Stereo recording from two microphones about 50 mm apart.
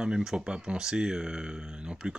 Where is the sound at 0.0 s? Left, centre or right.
Centre.